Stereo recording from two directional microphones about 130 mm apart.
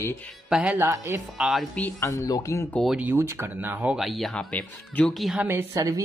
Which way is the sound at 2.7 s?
Centre (ahead or behind).